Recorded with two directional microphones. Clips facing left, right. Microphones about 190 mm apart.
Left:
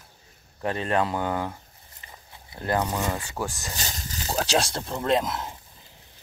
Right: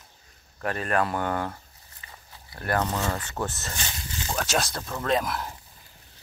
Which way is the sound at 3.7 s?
40° left (ahead or behind).